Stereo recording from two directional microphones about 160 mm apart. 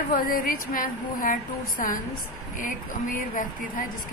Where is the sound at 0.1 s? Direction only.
60° left (ahead or behind).